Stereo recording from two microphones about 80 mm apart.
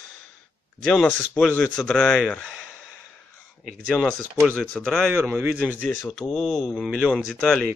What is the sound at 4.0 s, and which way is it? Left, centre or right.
A man's voice, centre.